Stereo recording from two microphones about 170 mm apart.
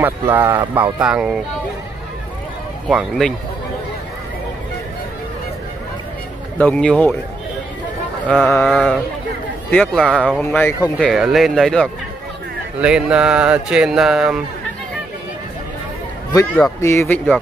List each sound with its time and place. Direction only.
0.0 s speech: 10° right (ahead or behind)
2.9 s speech: centre (ahead or behind)
6.6 s speech: 5° left (ahead or behind)
8.3 s speech: 5° left (ahead or behind)
11.0 s speech: centre (ahead or behind)
16.3 s speech: 15° left (ahead or behind)